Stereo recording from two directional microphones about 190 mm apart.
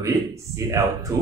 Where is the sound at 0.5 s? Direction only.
15° right (ahead or behind).